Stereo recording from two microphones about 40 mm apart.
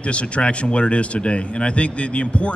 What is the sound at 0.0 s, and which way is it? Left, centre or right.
A man's voice, left.